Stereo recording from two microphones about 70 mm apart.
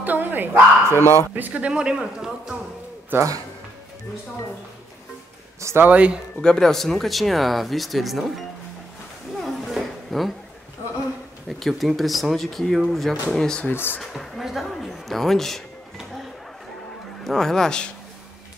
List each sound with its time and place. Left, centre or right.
0.0 s speech: right; by 2.5 s centre
5.6 s speech: right
5.9 s speech: centre
6.4 s speech: centre
9.4 s a sound: centre
11.4 s speech: centre
13.7 s speech: left
14.1 s speech: centre
17.2 s speech: centre